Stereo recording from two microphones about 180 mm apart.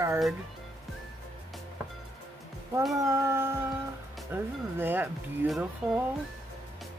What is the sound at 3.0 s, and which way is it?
Speech, 15° right (ahead or behind).